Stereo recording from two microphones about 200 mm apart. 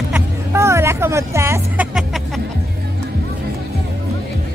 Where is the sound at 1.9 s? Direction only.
Centre (ahead or behind).